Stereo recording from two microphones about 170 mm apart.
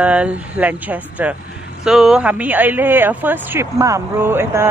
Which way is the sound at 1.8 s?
5° right (ahead or behind).